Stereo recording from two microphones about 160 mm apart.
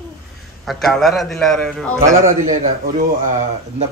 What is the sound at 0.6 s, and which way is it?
A man's voice, centre (ahead or behind).